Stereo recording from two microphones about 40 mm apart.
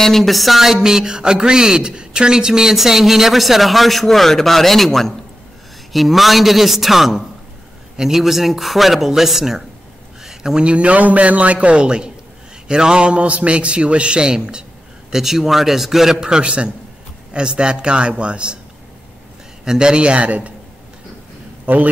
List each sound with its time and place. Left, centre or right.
0.0 s a man's voice: centre
10.2 s a sound: centre
10.6 s a man's voice: right; by 16.2 s centre
16.2 s a man's voice: right
19.6 s a man's voice: centre
20.2 s a man's voice: right
21.7 s a man's voice: right